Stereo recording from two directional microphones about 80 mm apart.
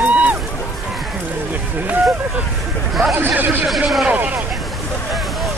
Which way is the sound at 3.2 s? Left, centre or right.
Right.